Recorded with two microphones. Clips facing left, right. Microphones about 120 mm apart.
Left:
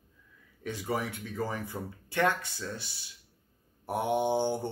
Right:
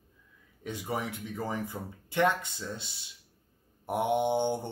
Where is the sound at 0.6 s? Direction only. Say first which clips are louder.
Left 1 dB; 20° right (ahead or behind).